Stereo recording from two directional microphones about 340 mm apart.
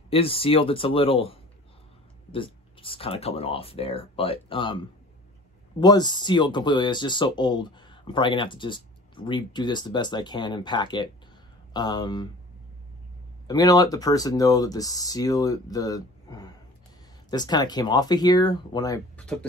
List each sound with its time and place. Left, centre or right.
0.1 s speech: centre
13.5 s speech: centre